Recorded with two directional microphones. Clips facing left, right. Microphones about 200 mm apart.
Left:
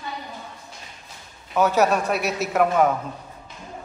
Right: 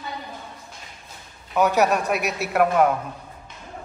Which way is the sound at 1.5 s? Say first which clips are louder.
Even; 15° right (ahead or behind).